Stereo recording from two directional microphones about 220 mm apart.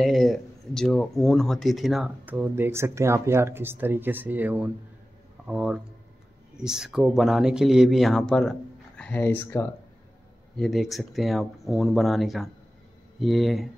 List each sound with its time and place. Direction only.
0.0 s speech: centre (ahead or behind)
10.6 s speech: centre (ahead or behind)